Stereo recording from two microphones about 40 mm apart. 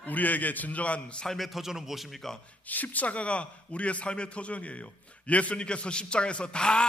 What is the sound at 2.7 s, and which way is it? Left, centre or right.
A man's voice, left.